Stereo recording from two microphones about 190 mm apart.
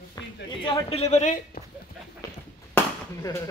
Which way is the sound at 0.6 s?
30° left (ahead or behind).